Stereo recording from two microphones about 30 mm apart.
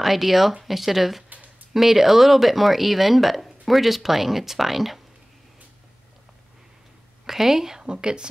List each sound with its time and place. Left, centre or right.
0.0 s speech: centre
7.2 s speech: centre
7.8 s a woman's voice: right